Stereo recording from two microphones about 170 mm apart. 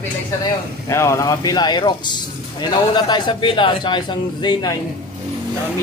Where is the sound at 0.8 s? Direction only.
20° left (ahead or behind).